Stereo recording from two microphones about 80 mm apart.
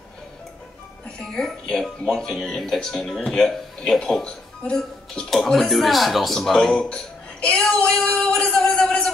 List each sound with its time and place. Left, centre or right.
1.2 s speech: centre